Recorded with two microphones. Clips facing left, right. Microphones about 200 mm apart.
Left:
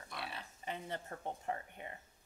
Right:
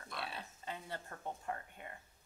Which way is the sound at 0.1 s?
20° left (ahead or behind).